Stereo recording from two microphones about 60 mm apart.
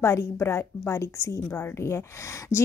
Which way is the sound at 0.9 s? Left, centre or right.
Left.